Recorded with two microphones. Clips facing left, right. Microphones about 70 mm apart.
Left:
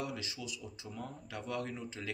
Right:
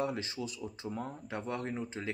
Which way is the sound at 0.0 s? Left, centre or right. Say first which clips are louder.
Right 6 dB; right.